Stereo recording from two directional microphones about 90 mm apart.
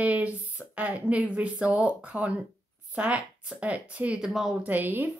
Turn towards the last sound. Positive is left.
turn(degrees=-20)  # may be behind; listen again after turning